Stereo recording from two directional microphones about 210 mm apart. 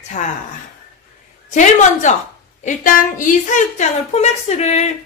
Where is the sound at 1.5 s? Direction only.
35° left (ahead or behind).